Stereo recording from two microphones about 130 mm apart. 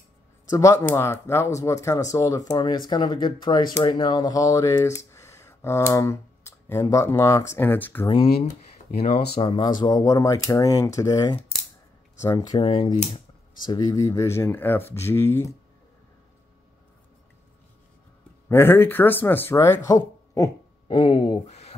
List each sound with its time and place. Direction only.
0.5 s speech: 25° left (ahead or behind)
9.0 s speech: 50° left (ahead or behind)
9.8 s speech: 30° left (ahead or behind)
12.4 s speech: 35° left (ahead or behind)
13.7 s speech: 25° left (ahead or behind)
18.5 s speech: 15° left (ahead or behind)
20.9 s speech: 40° left (ahead or behind)
21.5 s a sound: 60° left (ahead or behind)